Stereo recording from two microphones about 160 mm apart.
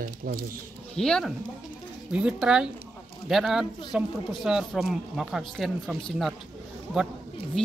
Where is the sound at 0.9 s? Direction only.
5° left (ahead or behind).